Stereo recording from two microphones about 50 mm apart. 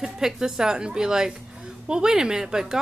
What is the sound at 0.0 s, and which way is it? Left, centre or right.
Speech, centre.